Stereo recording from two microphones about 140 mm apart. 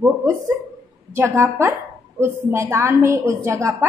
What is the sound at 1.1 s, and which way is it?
A woman's voice, 20° right (ahead or behind).